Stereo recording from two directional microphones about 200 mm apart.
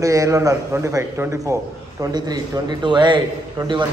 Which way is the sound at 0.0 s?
15° right (ahead or behind).